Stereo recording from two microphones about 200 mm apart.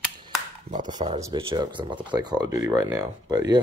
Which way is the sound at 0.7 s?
35° right (ahead or behind).